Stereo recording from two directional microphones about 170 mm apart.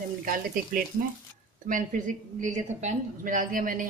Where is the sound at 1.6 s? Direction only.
50° right (ahead or behind).